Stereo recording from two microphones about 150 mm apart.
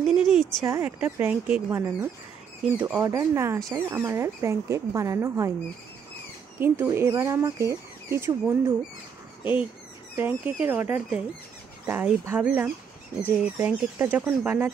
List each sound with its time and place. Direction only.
0.0 s a sound: 5° right (ahead or behind)
0.7 s speech: 15° right (ahead or behind)
6.6 s speech: 15° right (ahead or behind)